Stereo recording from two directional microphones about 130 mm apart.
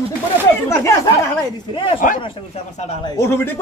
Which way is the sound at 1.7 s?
40° left (ahead or behind).